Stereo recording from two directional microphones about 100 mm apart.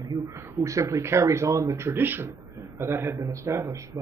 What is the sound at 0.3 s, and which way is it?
A man's voice, 30° right (ahead or behind).